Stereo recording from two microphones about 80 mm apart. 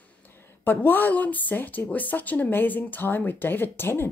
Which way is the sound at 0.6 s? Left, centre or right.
Left.